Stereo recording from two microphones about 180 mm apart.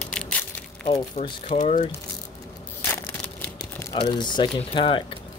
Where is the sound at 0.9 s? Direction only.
30° left (ahead or behind).